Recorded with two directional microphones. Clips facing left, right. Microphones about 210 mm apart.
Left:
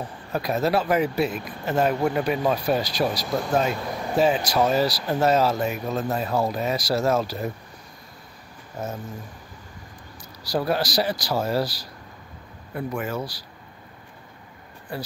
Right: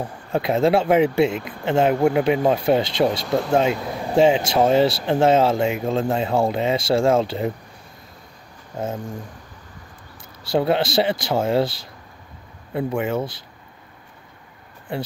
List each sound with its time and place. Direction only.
0.0 s speech: 25° right (ahead or behind)
8.7 s speech: 25° right (ahead or behind)
10.4 s speech: 25° right (ahead or behind)